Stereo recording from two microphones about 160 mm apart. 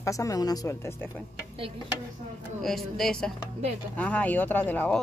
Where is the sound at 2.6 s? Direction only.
Centre (ahead or behind).